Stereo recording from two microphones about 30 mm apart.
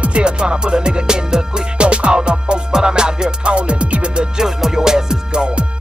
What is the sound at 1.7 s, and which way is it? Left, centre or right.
Music, right.